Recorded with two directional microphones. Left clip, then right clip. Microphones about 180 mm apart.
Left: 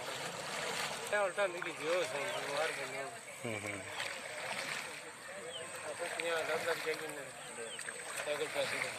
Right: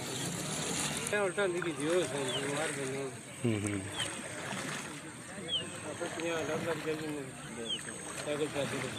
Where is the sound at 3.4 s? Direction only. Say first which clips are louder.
Right 5 dB; 5° left (ahead or behind).